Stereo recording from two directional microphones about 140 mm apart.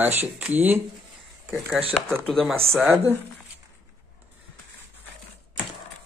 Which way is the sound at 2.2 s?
5° left (ahead or behind).